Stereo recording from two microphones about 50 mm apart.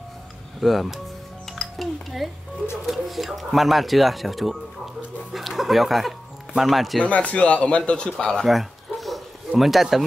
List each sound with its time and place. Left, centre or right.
0.6 s speech: centre
1.5 s music: centre
2.9 s speech: centre
7.1 s a man's voice: left
8.5 s a sound: centre